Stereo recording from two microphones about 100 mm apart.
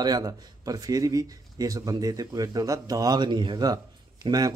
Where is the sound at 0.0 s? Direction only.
40° right (ahead or behind).